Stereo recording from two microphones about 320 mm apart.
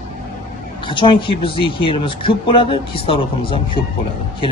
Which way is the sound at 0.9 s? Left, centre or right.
Centre.